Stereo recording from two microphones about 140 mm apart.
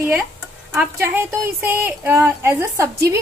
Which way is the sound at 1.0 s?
15° right (ahead or behind).